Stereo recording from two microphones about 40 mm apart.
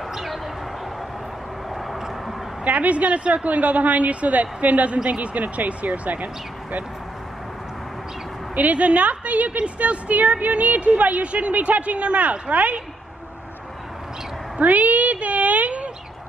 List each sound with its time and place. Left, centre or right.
0.1 s a sound: centre
2.6 s a woman's voice: right
8.5 s a woman's voice: right
14.6 s speech: right